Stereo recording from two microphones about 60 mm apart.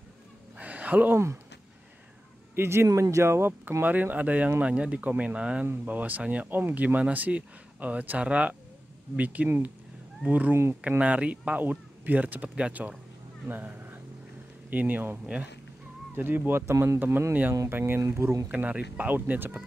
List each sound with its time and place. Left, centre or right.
0.6 s a sound: right
1.1 s speech: right
2.5 s speech: right
2.9 s speech: right
3.8 s speech: right
10.5 s speech: right
10.8 s speech: right
16.2 s speech: right
18.0 s speech: right
18.5 s speech: right